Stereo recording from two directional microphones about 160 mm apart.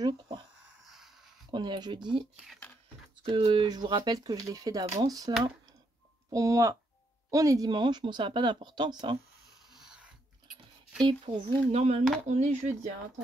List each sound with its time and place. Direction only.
0.0 s speech: 30° right (ahead or behind)
0.8 s a sound: centre (ahead or behind)
1.5 s speech: 30° right (ahead or behind)
2.3 s speech: centre (ahead or behind)
3.3 s speech: 30° right (ahead or behind)
6.3 s speech: 20° right (ahead or behind)
9.8 s a sound: 5° right (ahead or behind)
11.0 s speech: 30° right (ahead or behind)